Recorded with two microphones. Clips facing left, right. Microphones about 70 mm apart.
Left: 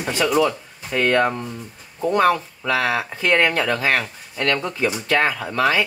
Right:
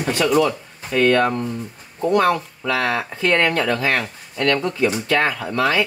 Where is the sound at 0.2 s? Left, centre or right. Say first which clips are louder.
Right 1 dB; centre.